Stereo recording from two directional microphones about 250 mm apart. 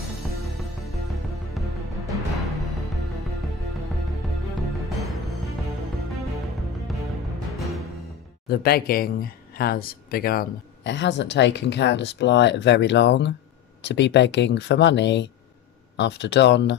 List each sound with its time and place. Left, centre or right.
1.6 s music: centre
4.8 s music: centre
7.5 s music: centre
8.5 s speech: left